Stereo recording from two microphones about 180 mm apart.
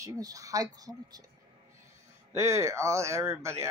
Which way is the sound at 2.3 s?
15° right (ahead or behind).